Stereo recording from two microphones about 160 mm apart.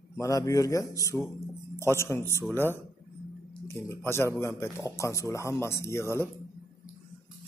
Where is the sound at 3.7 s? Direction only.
15° left (ahead or behind).